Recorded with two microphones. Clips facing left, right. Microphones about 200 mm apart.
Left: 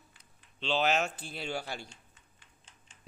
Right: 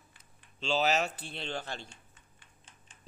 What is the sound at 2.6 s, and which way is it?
Typing, 55° right (ahead or behind).